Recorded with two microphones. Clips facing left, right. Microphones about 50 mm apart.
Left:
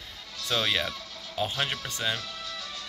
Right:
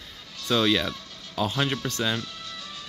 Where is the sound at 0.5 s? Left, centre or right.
Centre.